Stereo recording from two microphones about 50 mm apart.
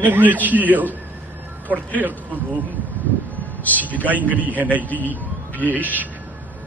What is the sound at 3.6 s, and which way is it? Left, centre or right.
Speech, left.